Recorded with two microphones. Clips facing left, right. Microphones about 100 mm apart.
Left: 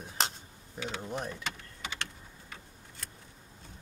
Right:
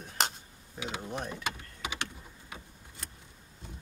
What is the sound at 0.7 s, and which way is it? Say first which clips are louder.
Mechanisms: even; 10° right (ahead or behind).